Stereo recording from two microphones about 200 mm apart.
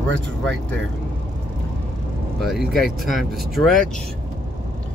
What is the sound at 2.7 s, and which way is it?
Speech, centre (ahead or behind).